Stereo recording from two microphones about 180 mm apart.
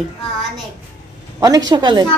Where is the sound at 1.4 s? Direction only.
20° right (ahead or behind).